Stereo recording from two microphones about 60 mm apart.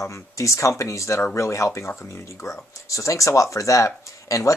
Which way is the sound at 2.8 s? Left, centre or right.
Left.